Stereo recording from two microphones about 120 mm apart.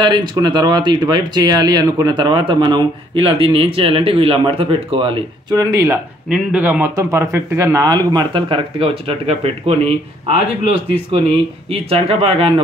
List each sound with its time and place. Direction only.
0.0 s speech: 40° right (ahead or behind)
5.6 s speech: 30° right (ahead or behind)
6.3 s a man's voice: 10° right (ahead or behind)
6.8 s a man's voice: 25° right (ahead or behind); by 12.5 s 50° right (ahead or behind)